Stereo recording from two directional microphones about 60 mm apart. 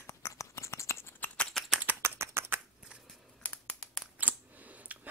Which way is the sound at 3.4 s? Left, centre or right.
Left.